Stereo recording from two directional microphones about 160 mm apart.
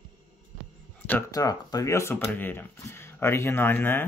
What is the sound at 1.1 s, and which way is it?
Speech, 20° left (ahead or behind).